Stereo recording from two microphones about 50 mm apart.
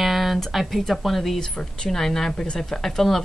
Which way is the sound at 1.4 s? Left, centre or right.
Centre.